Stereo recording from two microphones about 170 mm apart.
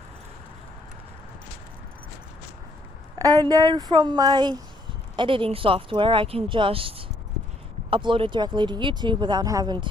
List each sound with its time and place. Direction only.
3.2 s speech: 20° right (ahead or behind)